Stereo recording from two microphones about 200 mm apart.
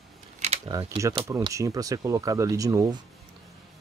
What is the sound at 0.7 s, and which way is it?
Speech, 25° right (ahead or behind).